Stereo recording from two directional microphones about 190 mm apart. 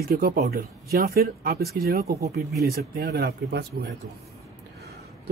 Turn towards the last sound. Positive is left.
turn(degrees=-55)  # may be behind; listen again after turning